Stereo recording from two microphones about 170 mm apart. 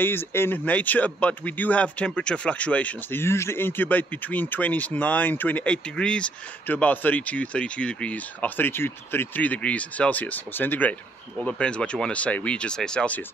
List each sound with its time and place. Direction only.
0.0 s speech: 15° left (ahead or behind)